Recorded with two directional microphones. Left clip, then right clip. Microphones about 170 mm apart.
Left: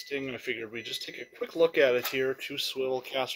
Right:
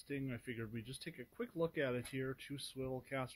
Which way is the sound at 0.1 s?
5° right (ahead or behind).